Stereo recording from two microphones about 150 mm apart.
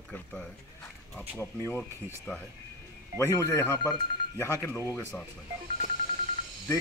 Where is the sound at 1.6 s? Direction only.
5° left (ahead or behind).